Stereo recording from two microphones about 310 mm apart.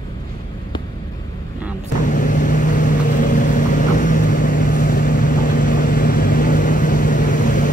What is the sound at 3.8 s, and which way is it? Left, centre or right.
Vehicle, left.